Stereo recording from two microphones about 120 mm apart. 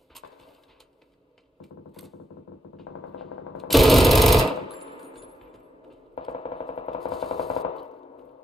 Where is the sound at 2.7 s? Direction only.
Centre (ahead or behind).